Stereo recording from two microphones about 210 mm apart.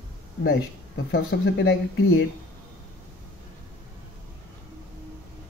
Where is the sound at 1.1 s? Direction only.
55° left (ahead or behind).